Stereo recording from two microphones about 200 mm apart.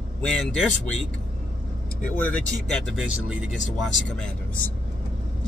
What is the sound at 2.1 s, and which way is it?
Speech, 10° left (ahead or behind).